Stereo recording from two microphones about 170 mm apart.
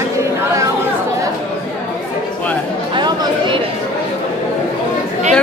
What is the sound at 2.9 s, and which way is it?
Chatter, 25° right (ahead or behind).